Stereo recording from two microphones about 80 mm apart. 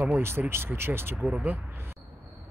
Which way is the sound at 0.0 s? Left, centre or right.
Right.